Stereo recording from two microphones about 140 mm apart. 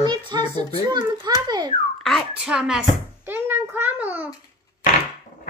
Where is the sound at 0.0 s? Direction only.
30° right (ahead or behind).